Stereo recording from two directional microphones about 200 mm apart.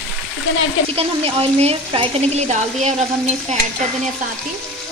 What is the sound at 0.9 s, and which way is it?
Speech, 30° right (ahead or behind).